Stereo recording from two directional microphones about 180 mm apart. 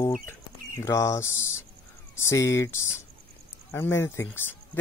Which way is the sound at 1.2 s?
90° left.